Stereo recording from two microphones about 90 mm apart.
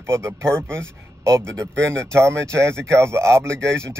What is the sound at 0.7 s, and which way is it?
Speech, 30° right (ahead or behind).